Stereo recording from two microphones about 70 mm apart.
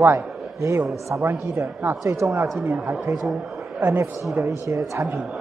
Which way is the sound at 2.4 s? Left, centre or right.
Right.